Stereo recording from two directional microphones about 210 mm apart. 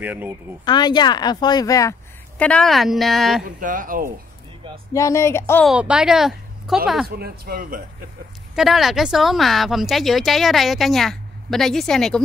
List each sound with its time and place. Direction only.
0.0 s speech: 10° right (ahead or behind)
0.7 s a woman's voice: 20° left (ahead or behind); by 3.4 s centre (ahead or behind)
3.4 s speech: 40° right (ahead or behind)
4.9 s a woman's voice: 15° left (ahead or behind)
5.7 s a woman's voice: 5° right (ahead or behind)
7.1 s speech: 45° right (ahead or behind)
8.5 s speech: centre (ahead or behind)